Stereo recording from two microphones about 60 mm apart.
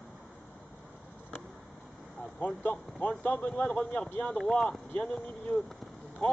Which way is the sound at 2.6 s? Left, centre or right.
Left.